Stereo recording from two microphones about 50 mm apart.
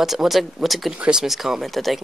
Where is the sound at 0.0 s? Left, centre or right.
Centre.